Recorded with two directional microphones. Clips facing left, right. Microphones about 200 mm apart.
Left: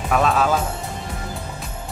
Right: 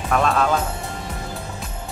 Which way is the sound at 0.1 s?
5° left (ahead or behind).